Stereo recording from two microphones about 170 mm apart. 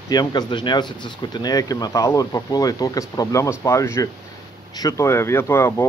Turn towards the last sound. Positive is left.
turn(degrees=15)  # may be behind; listen again after turning